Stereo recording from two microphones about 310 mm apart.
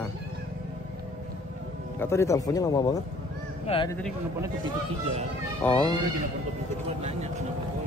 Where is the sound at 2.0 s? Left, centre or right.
Centre.